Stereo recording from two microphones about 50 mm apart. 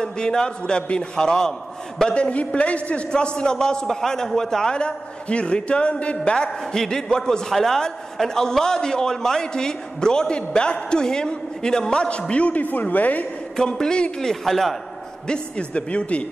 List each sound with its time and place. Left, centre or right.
0.0 s a man's voice: centre
12.6 s speech: left
13.6 s a man's voice: centre
14.3 s a man's voice: centre
15.2 s a man's voice: centre